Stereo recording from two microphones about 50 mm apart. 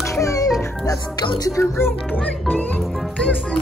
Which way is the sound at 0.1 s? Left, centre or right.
Left.